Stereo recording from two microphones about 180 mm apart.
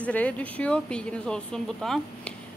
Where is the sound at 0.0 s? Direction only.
5° left (ahead or behind).